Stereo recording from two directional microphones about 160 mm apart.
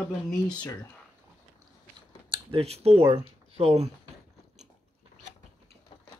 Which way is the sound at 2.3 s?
35° right (ahead or behind).